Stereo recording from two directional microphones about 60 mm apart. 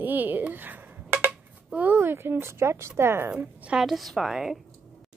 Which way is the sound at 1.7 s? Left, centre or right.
Right.